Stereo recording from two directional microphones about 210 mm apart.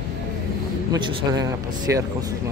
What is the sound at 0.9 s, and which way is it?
Speech, 15° right (ahead or behind).